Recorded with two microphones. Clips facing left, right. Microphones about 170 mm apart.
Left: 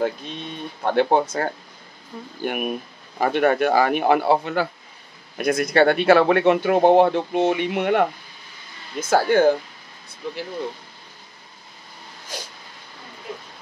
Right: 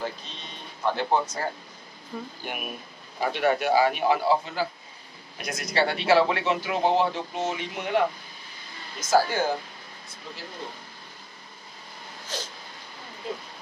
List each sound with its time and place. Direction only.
0.0 s speech: 55° left (ahead or behind)
9.1 s speech: 60° left (ahead or behind)
12.3 s a sound: 10° left (ahead or behind)